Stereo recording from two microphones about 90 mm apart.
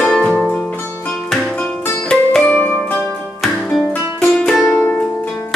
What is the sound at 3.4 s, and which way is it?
Music, centre (ahead or behind).